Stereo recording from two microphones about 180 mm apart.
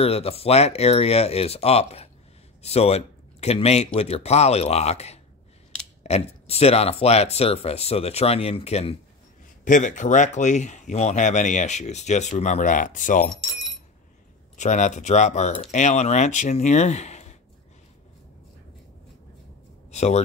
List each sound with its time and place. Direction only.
0.0 s speech: 35° left (ahead or behind)
9.7 s speech: 45° left (ahead or behind)
13.5 s keys jangling: centre (ahead or behind)
14.6 s speech: 40° left (ahead or behind)
19.9 s speech: 40° left (ahead or behind)